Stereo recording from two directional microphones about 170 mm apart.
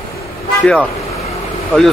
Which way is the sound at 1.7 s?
5° left (ahead or behind).